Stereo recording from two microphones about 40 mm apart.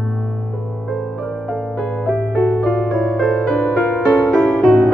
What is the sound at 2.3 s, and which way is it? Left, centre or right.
Piano, left.